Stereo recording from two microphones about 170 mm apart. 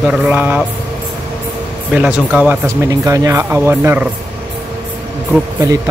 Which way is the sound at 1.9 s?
5° right (ahead or behind).